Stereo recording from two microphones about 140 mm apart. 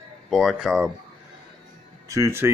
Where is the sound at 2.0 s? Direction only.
25° right (ahead or behind).